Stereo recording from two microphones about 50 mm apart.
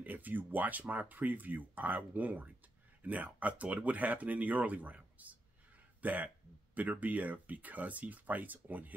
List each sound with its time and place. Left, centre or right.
0.0 s speech: right